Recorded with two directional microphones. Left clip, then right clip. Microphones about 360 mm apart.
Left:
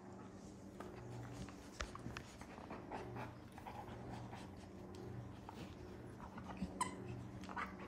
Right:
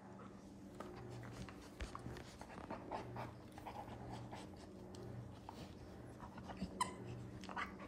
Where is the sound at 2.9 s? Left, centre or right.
Centre.